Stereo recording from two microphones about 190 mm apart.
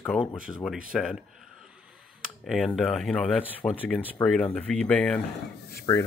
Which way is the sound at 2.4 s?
Centre (ahead or behind).